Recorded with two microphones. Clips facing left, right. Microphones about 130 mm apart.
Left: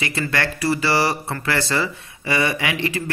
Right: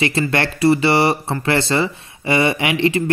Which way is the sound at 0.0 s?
25° right (ahead or behind).